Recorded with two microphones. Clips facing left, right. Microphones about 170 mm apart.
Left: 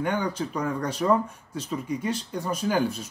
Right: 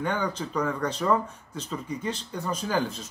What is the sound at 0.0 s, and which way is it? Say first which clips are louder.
Speech: left 2 dB; 10° left (ahead or behind).